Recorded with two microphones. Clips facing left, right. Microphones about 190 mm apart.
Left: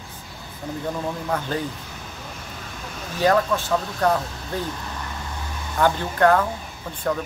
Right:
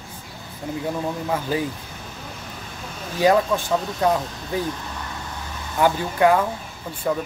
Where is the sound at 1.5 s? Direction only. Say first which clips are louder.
Right 5 dB; 10° right (ahead or behind).